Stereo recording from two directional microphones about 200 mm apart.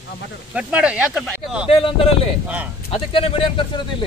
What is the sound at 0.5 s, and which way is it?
Speech, 5° right (ahead or behind).